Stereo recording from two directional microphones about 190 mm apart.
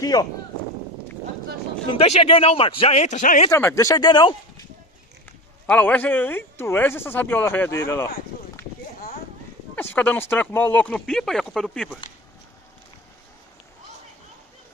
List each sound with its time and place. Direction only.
0.0 s speech: 20° left (ahead or behind)
1.9 s a man's voice: 30° left (ahead or behind)
3.4 s speech: 15° left (ahead or behind)
5.7 s speech: 10° left (ahead or behind)
9.8 s speech: 10° left (ahead or behind)